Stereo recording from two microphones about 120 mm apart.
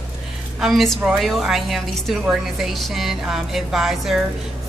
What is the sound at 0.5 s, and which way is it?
A woman's voice, centre (ahead or behind).